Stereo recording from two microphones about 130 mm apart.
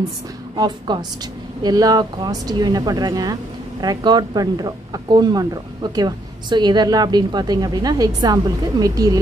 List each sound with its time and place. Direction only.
0.6 s speech: 35° right (ahead or behind)